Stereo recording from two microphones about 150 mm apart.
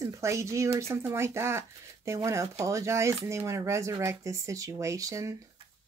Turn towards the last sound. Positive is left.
turn(degrees=-20)  # may be behind; listen again after turning